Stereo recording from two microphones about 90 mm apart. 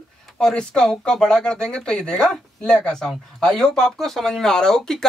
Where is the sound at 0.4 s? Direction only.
10° left (ahead or behind).